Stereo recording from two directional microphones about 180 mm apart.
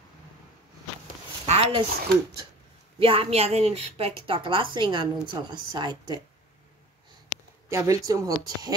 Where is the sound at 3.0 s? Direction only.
30° right (ahead or behind).